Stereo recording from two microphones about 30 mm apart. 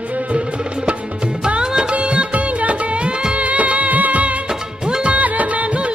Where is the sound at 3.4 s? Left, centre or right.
Right.